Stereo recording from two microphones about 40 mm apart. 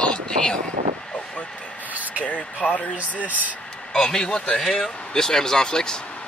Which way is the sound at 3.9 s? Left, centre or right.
Centre.